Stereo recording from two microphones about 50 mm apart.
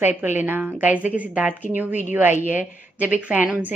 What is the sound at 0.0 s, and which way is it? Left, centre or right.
A woman's voice, right.